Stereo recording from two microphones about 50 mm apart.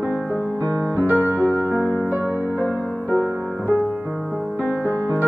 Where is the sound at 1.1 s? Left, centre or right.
Left.